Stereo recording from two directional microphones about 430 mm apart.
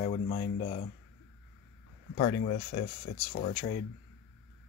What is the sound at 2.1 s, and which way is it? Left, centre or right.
Speech, centre.